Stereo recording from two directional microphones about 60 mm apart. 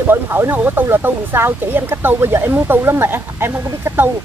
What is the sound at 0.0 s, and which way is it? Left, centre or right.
Speech, right.